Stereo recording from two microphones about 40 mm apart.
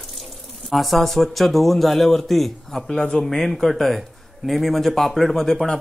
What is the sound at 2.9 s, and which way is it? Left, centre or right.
A man's voice, centre.